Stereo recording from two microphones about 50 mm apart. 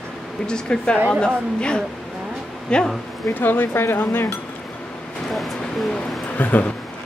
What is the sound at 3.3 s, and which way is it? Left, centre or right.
Speech, left.